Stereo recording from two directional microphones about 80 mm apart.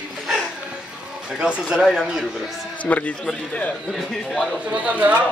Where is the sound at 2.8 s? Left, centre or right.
Centre.